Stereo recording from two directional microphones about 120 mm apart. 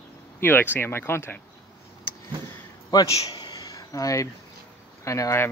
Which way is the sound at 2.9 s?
30° left (ahead or behind).